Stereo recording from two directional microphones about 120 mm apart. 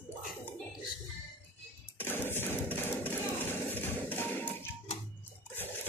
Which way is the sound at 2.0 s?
15° left (ahead or behind).